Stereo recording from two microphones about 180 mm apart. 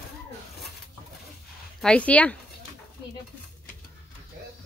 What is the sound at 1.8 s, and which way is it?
Speech, 5° left (ahead or behind).